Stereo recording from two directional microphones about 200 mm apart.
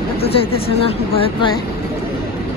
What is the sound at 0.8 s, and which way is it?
Speech, 25° left (ahead or behind).